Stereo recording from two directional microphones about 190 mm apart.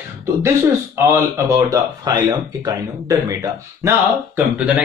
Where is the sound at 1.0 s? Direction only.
15° right (ahead or behind).